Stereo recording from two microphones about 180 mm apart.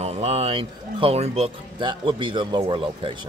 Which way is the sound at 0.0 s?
35° right (ahead or behind).